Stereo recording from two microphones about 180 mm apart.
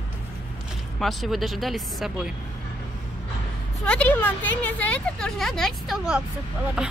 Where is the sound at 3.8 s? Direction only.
5° left (ahead or behind).